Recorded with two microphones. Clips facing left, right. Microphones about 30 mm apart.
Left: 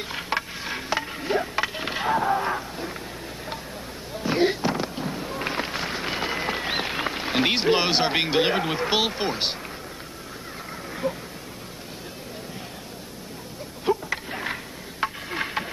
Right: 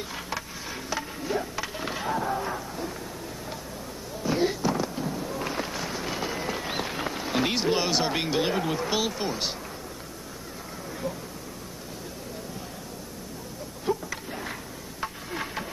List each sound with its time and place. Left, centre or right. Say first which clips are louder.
0.1 s a sound: left 6 dB; left
4.2 s fireworks: left 3 dB; left
13.8 s insect: left 5 dB; left